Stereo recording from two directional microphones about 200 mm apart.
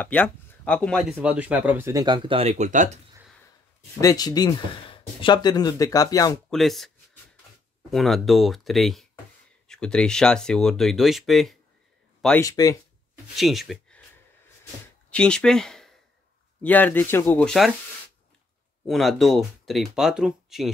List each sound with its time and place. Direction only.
0.0 s speech: 5° left (ahead or behind)
1.2 s speech: 5° right (ahead or behind); by 3.0 s 40° right (ahead or behind)
4.0 s speech: 20° left (ahead or behind)
6.5 s speech: centre (ahead or behind)
7.9 s speech: centre (ahead or behind)
12.4 s speech: 15° left (ahead or behind)
13.4 s speech: centre (ahead or behind)
15.0 s speech: 5° left (ahead or behind)
18.9 s speech: centre (ahead or behind)